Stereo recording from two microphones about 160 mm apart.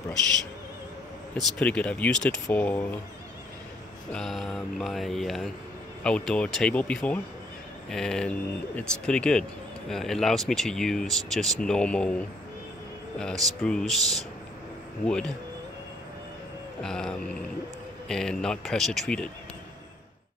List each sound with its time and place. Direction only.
1.3 s speech: 10° left (ahead or behind)
4.1 s speech: centre (ahead or behind)
13.2 s speech: 5° left (ahead or behind)
16.8 s speech: 5° left (ahead or behind)